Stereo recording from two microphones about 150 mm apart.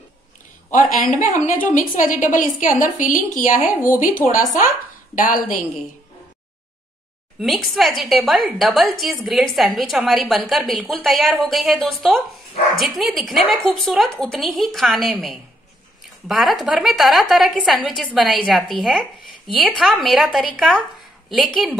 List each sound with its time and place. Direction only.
0.7 s a woman's voice: 60° left (ahead or behind)
7.3 s a woman's voice: centre (ahead or behind)